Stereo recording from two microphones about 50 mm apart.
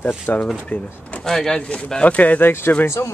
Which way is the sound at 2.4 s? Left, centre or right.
Left.